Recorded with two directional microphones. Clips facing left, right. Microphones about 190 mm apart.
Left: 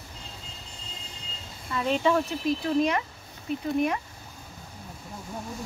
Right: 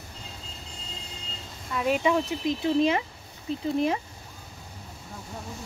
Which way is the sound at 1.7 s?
10° right (ahead or behind).